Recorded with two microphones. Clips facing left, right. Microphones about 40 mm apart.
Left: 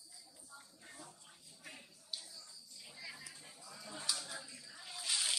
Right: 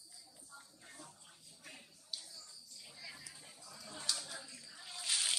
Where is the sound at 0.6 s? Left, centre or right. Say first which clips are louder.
Even; centre.